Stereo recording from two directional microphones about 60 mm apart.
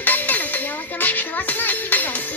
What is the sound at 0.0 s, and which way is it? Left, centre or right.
Dishes, left.